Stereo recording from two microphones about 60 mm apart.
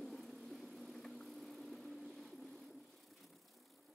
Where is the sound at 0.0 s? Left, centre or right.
Centre.